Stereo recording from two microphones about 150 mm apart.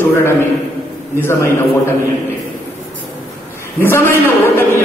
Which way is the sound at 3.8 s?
15° left (ahead or behind).